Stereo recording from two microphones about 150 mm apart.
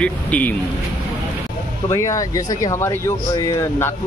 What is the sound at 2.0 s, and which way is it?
Speech, 20° left (ahead or behind).